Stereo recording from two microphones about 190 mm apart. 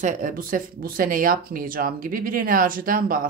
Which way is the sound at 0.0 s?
40° right (ahead or behind).